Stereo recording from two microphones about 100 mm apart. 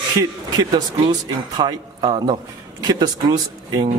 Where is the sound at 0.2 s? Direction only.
40° right (ahead or behind).